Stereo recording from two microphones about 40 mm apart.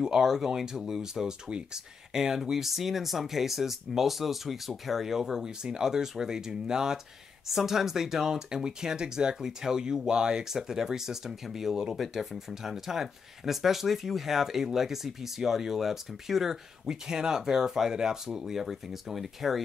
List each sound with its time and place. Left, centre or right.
0.0 s speech: centre